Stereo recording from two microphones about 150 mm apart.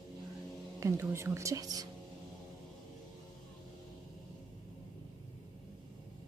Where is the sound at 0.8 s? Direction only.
20° right (ahead or behind).